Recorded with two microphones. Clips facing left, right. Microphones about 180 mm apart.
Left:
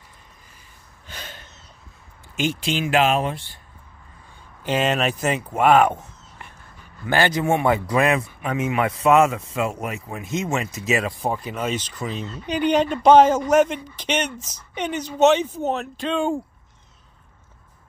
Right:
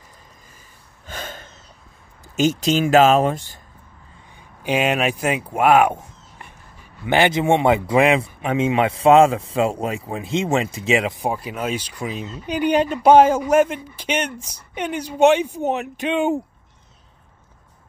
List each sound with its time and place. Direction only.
1.0 s a sound: 45° right (ahead or behind)
2.3 s speech: 40° right (ahead or behind)
4.6 s speech: 10° right (ahead or behind)
7.1 s speech: 20° right (ahead or behind)